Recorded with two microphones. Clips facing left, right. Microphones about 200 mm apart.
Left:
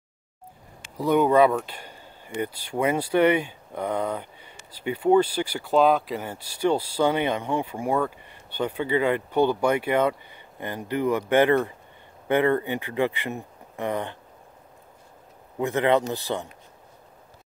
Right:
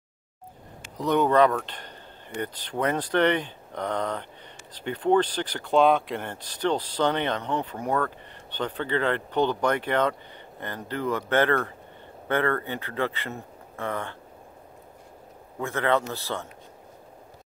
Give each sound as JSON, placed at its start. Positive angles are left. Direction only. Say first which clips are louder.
{"t": 0.9, "sound": "speech", "louder": "left 2 dB", "side_deg": 10}
{"t": 15.6, "sound": "speech", "louder": "left 4 dB", "side_deg": 15}